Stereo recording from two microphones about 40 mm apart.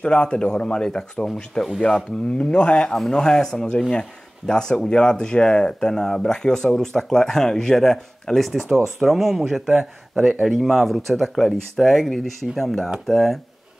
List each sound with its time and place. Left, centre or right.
0.0 s speech: left
2.3 s speech: left
2.9 s speech: centre